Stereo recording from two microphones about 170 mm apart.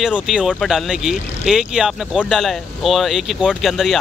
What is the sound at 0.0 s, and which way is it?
Speech, 5° right (ahead or behind).